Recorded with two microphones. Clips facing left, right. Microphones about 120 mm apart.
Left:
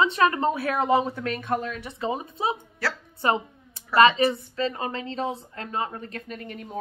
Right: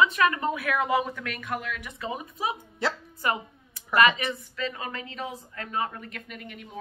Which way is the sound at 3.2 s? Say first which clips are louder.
Left 4 dB; 25° left (ahead or behind).